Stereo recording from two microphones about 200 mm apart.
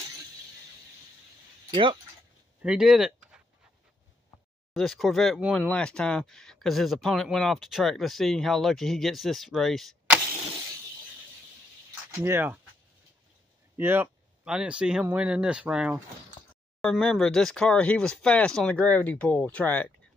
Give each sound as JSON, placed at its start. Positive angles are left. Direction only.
{"t": 1.7, "sound": "speech", "side_deg": -25}
{"t": 2.6, "sound": "speech", "side_deg": -5}
{"t": 4.7, "sound": "speech", "side_deg": 0}
{"t": 12.2, "sound": "speech", "side_deg": -10}
{"t": 13.7, "sound": "speech", "side_deg": -10}